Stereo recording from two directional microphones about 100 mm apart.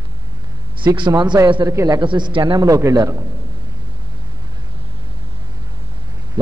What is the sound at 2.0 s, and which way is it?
Speech, 50° right (ahead or behind).